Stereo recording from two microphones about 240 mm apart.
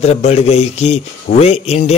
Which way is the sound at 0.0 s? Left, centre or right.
Left.